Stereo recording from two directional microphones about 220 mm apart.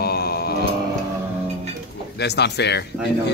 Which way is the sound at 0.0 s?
45° left (ahead or behind).